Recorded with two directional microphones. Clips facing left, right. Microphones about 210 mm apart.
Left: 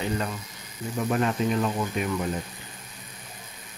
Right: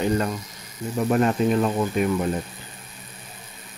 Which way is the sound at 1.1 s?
40° right (ahead or behind).